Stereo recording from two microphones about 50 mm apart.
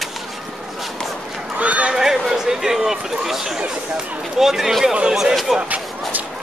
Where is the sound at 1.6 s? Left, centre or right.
Right.